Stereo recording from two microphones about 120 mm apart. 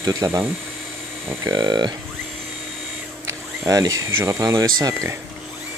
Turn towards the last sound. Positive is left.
turn(degrees=-25)  # may be behind; listen again after turning